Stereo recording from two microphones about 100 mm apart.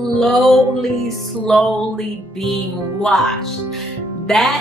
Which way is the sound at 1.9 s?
Centre (ahead or behind).